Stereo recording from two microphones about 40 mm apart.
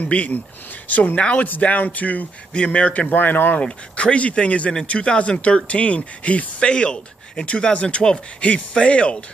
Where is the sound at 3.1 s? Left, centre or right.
Left.